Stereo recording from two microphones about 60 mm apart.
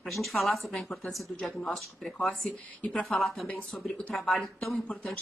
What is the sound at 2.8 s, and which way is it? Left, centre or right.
Speech, centre.